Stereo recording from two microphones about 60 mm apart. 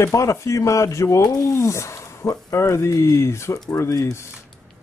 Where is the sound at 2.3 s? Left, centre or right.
Left.